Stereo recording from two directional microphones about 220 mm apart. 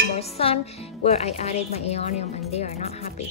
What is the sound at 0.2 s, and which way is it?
Music, 25° left (ahead or behind).